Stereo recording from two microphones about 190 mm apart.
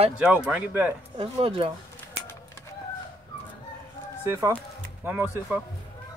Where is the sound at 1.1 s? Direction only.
30° right (ahead or behind).